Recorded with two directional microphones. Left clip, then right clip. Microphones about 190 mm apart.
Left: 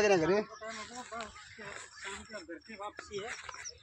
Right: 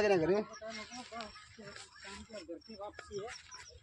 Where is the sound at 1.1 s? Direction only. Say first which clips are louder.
Left 3 dB; 5° right (ahead or behind).